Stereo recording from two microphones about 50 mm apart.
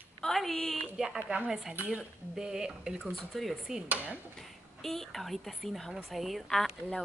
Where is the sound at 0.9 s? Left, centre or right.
Centre.